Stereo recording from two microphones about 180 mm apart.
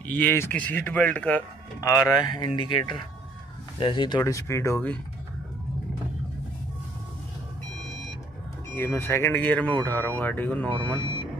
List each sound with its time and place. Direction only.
0.0 s speech: 10° left (ahead or behind); by 2.8 s 25° left (ahead or behind)
3.8 s speech: 25° left (ahead or behind)
4.2 s speech: 15° left (ahead or behind)
8.7 s speech: 10° left (ahead or behind)